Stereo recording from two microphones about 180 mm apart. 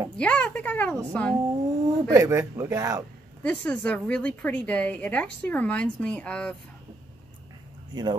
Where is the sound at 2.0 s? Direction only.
20° right (ahead or behind).